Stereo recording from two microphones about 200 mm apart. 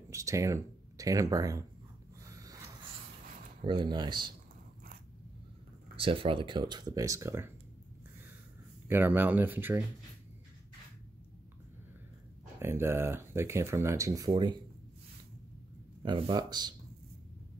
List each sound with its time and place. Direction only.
0.1 s speech: 15° right (ahead or behind)
2.2 s a sound: 15° right (ahead or behind)
3.6 s speech: 25° right (ahead or behind)
5.9 s speech: 25° right (ahead or behind)
8.8 s speech: 10° right (ahead or behind)
12.5 s speech: 10° right (ahead or behind)
16.0 s speech: 25° right (ahead or behind)